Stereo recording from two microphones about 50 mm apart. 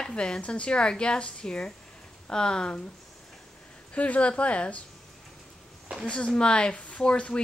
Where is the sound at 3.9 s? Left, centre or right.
Left.